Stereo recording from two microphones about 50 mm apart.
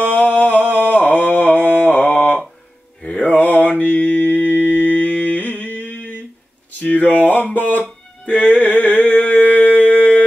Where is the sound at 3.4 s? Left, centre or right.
Left.